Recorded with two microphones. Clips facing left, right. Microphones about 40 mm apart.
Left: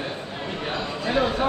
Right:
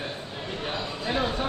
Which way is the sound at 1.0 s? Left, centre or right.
Centre.